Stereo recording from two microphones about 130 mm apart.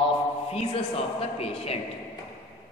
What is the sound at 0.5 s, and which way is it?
A man's voice, 50° left (ahead or behind).